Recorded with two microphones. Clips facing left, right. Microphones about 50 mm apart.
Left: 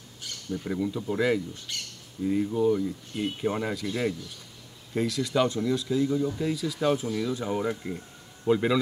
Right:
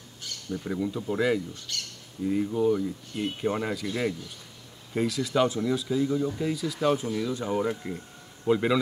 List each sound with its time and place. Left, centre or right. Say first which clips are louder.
0.5 s speech: left 1 dB; centre
1.7 s squawk: right 1 dB; left
2.2 s speech: even; centre